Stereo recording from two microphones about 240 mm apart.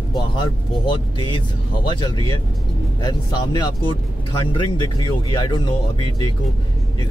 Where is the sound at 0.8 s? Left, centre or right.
Centre.